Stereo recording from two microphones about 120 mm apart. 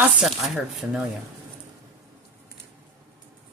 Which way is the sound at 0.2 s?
Centre (ahead or behind).